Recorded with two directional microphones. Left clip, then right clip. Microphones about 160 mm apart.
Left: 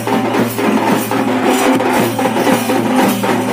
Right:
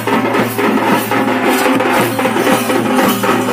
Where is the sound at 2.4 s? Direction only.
50° left (ahead or behind).